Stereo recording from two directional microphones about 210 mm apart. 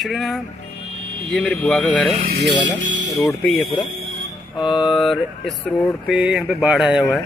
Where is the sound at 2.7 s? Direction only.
60° right (ahead or behind).